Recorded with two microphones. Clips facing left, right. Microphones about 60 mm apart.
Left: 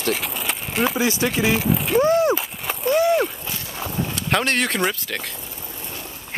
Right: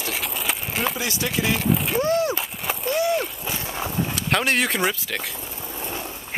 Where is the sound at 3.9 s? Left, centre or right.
Centre.